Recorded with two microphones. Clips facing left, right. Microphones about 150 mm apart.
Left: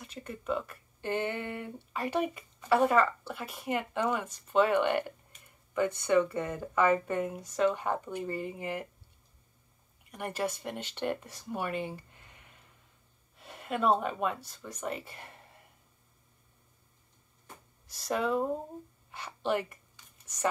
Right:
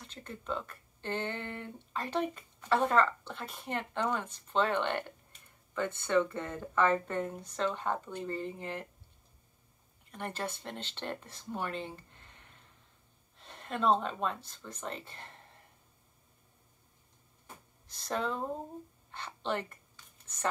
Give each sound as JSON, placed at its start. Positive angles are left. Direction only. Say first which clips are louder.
{"t": 0.0, "sound": "speech", "louder": "left 5 dB", "side_deg": 10}
{"t": 10.1, "sound": "speech", "louder": "left 4 dB", "side_deg": 10}
{"t": 17.8, "sound": "speech", "louder": "left 4 dB", "side_deg": 10}